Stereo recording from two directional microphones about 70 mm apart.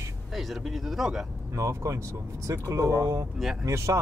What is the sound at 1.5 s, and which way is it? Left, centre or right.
Speech, right.